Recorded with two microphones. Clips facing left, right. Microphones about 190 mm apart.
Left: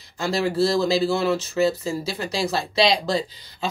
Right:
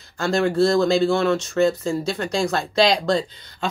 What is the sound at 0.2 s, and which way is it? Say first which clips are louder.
Speech: right 3 dB; centre (ahead or behind).